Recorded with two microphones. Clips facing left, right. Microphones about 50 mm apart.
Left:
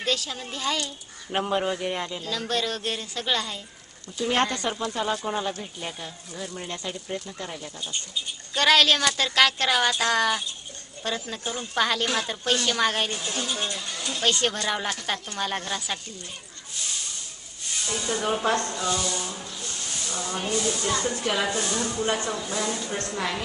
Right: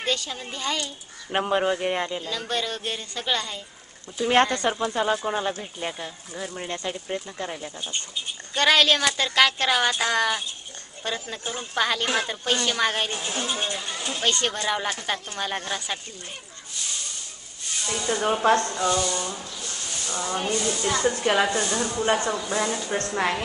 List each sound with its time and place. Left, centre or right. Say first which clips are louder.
0.0 s speech: even; centre
4.2 s speech: right 4 dB; centre; by 8.2 s right
8.5 s speech: even; centre
13.1 s speech: right 1 dB; right
14.2 s speech: even; centre
17.7 s speech: right 2 dB; centre
19.8 s snake: right 1 dB; centre
20.2 s speech: right 2 dB; centre
23.0 s a woman's voice: right 6 dB; right